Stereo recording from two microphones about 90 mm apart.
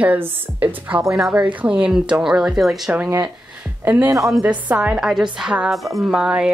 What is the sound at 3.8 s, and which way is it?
Speech, 25° right (ahead or behind).